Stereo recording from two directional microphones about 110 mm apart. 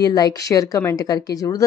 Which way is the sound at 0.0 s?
35° left (ahead or behind).